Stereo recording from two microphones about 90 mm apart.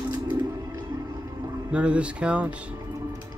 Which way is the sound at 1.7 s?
15° right (ahead or behind).